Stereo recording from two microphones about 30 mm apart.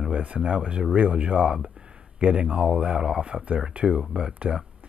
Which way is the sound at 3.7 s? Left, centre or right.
Right.